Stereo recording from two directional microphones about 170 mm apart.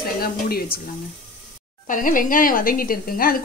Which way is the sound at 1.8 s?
50° left (ahead or behind).